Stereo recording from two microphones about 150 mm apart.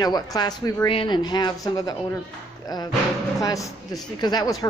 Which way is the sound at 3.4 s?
25° left (ahead or behind).